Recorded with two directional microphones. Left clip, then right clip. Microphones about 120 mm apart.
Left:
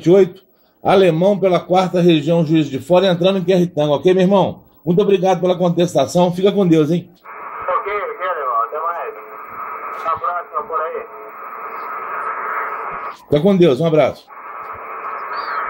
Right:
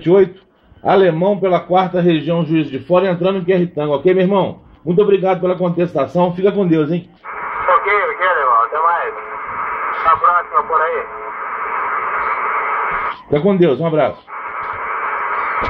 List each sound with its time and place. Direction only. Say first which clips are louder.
0.0 s a man's voice: even; 60° left (ahead or behind)
0.8 s speech: even; 40° left (ahead or behind)
1.5 s a man's voice: right 1 dB; 55° left (ahead or behind)
7.4 s radio: right 6 dB; 15° right (ahead or behind)
13.3 s speech: left 1 dB; 50° left (ahead or behind)
14.6 s a sound: right 7 dB; 15° right (ahead or behind)